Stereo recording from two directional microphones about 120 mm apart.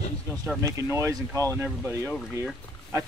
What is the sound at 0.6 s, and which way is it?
Speech, 25° right (ahead or behind).